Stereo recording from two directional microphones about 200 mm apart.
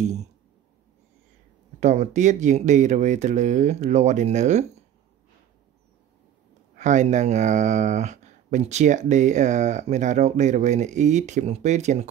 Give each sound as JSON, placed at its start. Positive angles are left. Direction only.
{"t": 1.8, "sound": "speech", "side_deg": -35}
{"t": 6.7, "sound": "speech", "side_deg": -35}